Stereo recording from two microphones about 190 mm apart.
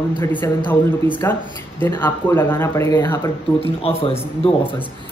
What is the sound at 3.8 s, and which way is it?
Speech, 30° left (ahead or behind).